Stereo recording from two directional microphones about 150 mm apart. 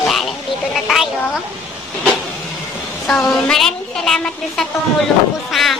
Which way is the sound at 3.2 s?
5° left (ahead or behind).